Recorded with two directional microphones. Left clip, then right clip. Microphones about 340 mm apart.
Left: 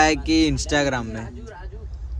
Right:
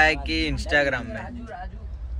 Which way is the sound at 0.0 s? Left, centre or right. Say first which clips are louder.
Left 3 dB; centre.